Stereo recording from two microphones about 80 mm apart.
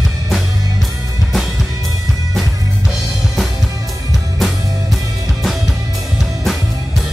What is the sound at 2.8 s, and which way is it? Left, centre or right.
Drum, centre.